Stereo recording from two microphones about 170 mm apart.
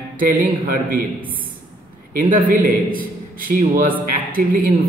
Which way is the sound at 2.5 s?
55° right (ahead or behind).